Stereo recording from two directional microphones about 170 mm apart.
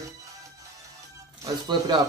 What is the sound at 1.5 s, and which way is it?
Speech, 25° right (ahead or behind).